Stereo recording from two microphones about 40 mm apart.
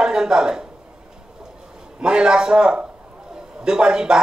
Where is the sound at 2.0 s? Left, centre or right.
Right.